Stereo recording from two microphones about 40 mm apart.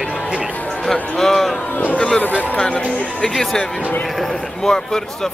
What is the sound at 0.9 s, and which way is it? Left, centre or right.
Music, centre.